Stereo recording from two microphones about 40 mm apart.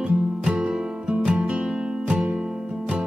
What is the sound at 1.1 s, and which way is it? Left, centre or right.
Music, right.